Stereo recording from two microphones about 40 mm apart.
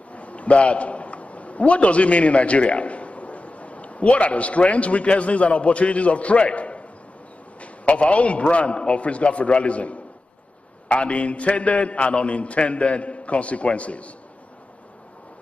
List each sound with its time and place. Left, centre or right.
0.1 s a man's voice: left